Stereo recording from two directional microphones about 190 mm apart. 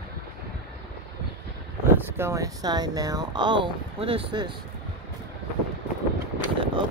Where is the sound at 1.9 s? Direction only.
15° right (ahead or behind).